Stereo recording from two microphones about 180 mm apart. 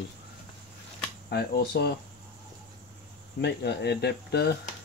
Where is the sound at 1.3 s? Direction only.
65° left (ahead or behind).